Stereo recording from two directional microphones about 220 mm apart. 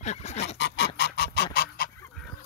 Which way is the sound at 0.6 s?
50° left (ahead or behind).